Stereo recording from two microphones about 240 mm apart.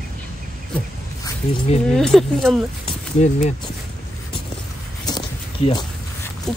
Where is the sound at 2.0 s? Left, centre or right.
Centre.